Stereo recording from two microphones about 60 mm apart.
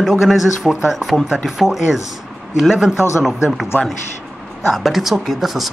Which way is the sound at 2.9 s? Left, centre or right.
Left.